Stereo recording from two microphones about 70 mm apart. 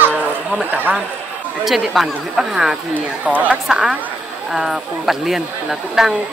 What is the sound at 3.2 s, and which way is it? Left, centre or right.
Speech, right.